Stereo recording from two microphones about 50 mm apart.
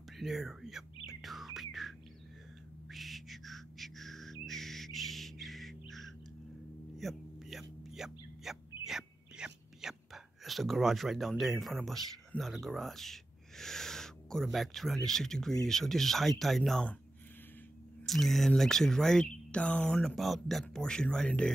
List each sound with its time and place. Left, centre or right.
0.2 s a sound: centre
2.9 s whistle: centre
7.0 s a sound: centre
12.4 s speech: centre
18.0 s speech: centre; by 20.0 s left
20.2 s speech: centre
20.8 s speech: centre